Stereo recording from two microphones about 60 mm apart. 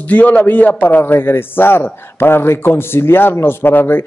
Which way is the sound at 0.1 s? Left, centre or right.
Left.